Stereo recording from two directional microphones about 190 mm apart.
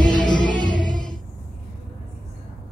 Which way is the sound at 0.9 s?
Centre (ahead or behind).